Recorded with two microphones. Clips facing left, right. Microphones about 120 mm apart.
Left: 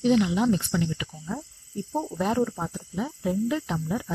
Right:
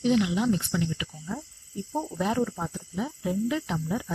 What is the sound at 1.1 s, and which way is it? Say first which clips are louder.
Cricket: left 2 dB; 20° left (ahead or behind).